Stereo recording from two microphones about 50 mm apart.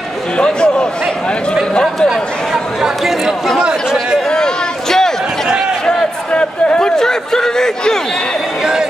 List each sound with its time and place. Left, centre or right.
0.4 s a sound: centre
1.7 s speech: centre
2.0 s speech: centre
4.3 s a sound: centre
6.3 s a man's voice: left
7.0 s speech: centre